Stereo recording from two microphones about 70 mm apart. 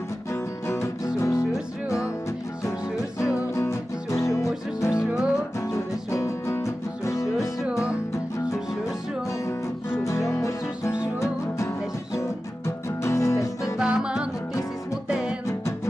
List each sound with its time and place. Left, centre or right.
0.3 s music: left
1.3 s music: centre
2.6 s music: left
5.0 s music: centre
6.1 s music: left
10.0 s music: left
13.7 s music: centre